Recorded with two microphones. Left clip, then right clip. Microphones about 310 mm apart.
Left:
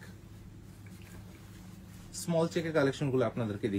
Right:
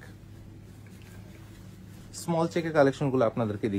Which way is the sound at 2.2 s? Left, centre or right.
Centre.